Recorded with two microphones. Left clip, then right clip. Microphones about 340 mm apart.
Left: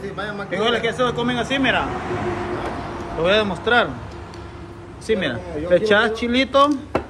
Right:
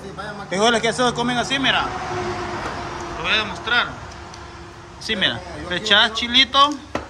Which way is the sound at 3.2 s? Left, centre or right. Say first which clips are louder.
Left 4 dB; centre.